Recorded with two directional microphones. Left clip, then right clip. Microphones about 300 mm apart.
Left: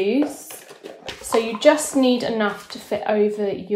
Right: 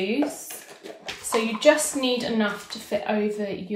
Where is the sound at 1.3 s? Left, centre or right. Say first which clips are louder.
Left 3 dB; left.